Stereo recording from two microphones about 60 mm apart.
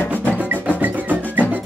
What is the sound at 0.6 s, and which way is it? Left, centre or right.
Music, right.